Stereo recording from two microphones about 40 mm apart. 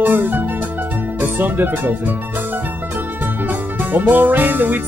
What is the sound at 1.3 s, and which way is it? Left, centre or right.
Speech, right.